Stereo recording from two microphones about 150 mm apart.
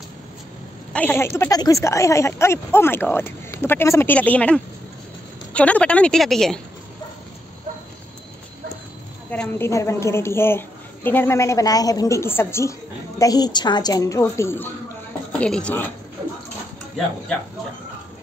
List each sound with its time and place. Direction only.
0.9 s speech: 15° left (ahead or behind)
9.3 s a woman's voice: 10° left (ahead or behind)